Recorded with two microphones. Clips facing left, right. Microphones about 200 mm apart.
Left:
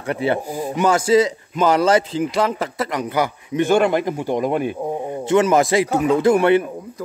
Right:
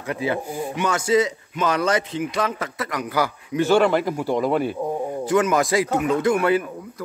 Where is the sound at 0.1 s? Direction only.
30° left (ahead or behind).